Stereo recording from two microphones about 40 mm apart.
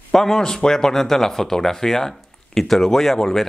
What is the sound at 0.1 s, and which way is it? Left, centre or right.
Speech, centre.